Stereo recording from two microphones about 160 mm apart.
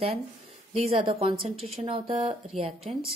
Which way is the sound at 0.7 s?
35° right (ahead or behind).